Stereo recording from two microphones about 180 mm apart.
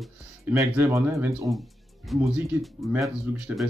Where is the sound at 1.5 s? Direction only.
Centre (ahead or behind).